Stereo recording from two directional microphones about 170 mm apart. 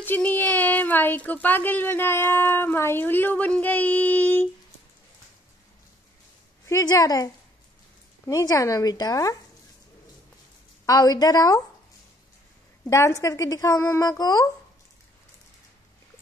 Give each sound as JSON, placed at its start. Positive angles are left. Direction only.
{"t": 0.0, "sound": "speech", "side_deg": 10}
{"t": 6.7, "sound": "a woman's voice", "side_deg": 20}
{"t": 8.3, "sound": "a woman's voice", "side_deg": 20}
{"t": 10.9, "sound": "a woman's voice", "side_deg": 25}
{"t": 12.8, "sound": "a woman's voice", "side_deg": 15}